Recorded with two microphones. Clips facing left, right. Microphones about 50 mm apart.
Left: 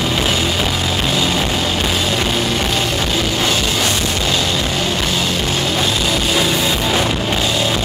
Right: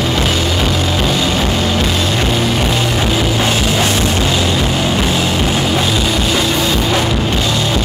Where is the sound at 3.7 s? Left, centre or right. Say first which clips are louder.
Right 4 dB; right.